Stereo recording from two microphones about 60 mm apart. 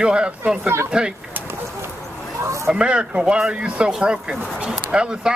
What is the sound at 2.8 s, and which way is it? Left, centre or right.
Speech, centre.